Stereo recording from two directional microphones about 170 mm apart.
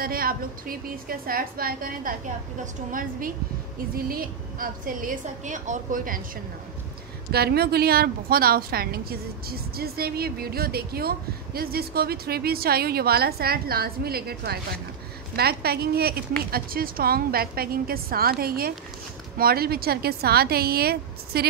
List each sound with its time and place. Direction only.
0.0 s a woman's voice: 60° right (ahead or behind)
7.3 s a woman's voice: 70° right (ahead or behind)